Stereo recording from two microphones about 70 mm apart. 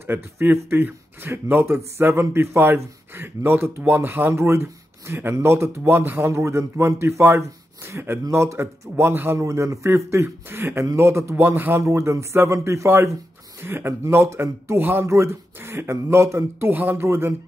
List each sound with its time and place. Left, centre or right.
0.0 s speech: right
8.9 s speech: right
9.4 s speech: right
11.8 s speech: right
13.6 s speech: right
16.7 s speech: right